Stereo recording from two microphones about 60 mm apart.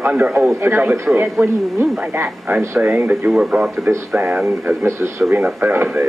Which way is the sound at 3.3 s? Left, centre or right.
Centre.